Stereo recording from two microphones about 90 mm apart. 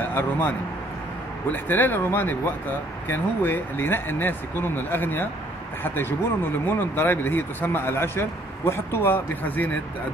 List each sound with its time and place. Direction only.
0.0 s a man's voice: 25° left (ahead or behind)